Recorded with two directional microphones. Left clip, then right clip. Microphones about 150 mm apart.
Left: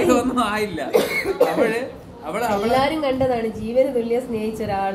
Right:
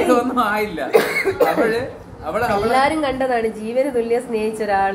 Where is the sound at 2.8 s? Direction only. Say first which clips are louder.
Right 2 dB; 25° right (ahead or behind).